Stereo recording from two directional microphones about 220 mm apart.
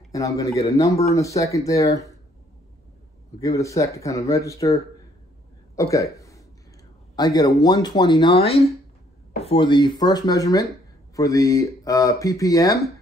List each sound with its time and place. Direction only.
0.1 s speech: 15° left (ahead or behind)
3.3 s speech: 15° left (ahead or behind)
5.8 s speech: 15° left (ahead or behind)
6.1 s a sound: 15° left (ahead or behind)
7.2 s speech: 15° left (ahead or behind)